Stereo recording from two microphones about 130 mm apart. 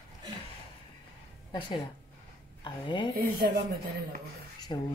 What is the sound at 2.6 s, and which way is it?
Speech, 35° left (ahead or behind).